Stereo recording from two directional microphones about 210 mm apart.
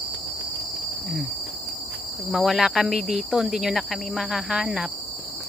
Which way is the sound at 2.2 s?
Centre (ahead or behind).